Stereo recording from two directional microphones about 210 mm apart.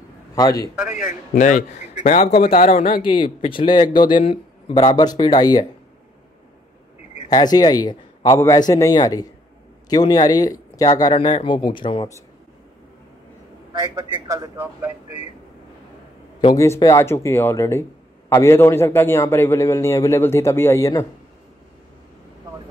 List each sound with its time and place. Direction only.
0.4 s a man's voice: 15° left (ahead or behind)
0.8 s a man's voice: 35° left (ahead or behind)
3.0 s a man's voice: 25° left (ahead or behind)
7.2 s a man's voice: 20° left (ahead or behind)
14.1 s a man's voice: 15° right (ahead or behind)
16.3 s a man's voice: 20° left (ahead or behind)